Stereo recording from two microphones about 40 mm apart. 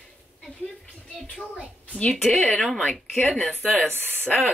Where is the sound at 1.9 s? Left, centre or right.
Left.